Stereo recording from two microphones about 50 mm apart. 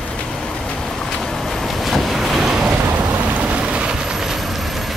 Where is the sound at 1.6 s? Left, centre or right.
Centre.